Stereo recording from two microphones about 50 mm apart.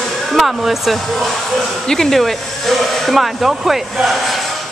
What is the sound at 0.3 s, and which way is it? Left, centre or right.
Speech, centre.